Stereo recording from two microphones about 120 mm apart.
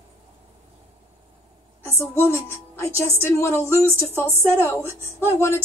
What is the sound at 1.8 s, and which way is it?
A woman's voice, 25° left (ahead or behind).